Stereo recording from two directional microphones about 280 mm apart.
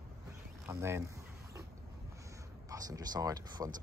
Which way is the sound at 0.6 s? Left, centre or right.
Centre.